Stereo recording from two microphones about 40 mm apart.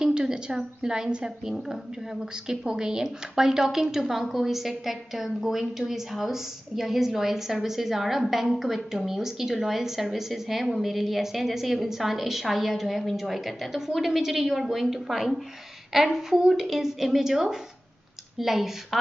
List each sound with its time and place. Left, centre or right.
0.0 s a woman's voice: centre